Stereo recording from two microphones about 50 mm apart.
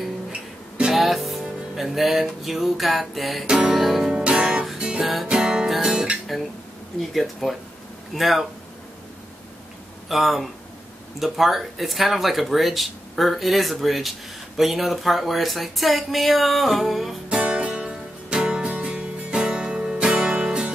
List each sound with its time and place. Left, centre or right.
0.3 s music: centre
0.9 s music: centre
3.4 s music: centre
3.7 s music: centre
4.1 s music: right
5.0 s speech: centre
5.3 s music: centre
7.0 s speech: centre
10.0 s speech: centre
17.3 s music: right